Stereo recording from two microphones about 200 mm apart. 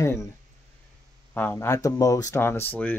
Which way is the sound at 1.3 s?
10° left (ahead or behind).